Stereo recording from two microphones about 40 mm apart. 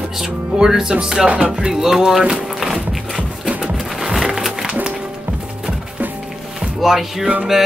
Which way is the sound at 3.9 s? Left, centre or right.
Centre.